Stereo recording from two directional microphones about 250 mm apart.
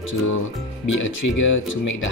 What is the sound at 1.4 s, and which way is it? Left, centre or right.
Speech, left.